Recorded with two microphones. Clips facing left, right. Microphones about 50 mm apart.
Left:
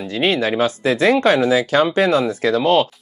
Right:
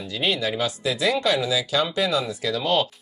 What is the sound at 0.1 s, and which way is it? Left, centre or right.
Speech, left.